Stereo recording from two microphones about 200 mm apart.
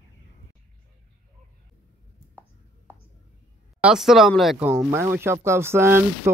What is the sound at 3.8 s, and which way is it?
Speech, centre (ahead or behind).